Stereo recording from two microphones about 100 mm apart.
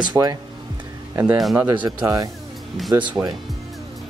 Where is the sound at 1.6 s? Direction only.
15° right (ahead or behind).